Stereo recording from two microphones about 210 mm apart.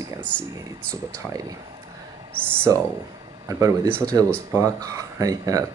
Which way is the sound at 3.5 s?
15° right (ahead or behind).